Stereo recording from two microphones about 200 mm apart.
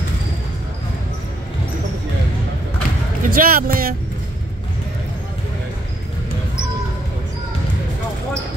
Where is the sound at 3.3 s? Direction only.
45° right (ahead or behind).